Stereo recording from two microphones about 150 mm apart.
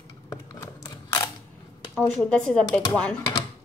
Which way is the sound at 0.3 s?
25° left (ahead or behind).